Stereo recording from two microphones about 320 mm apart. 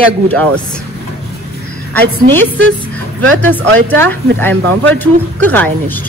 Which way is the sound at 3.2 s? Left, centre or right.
Right.